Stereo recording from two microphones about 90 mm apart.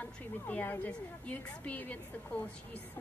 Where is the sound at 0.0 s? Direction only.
20° left (ahead or behind).